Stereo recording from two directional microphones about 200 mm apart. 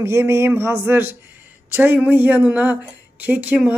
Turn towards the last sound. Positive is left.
turn(degrees=-5)  # may be behind; listen again after turning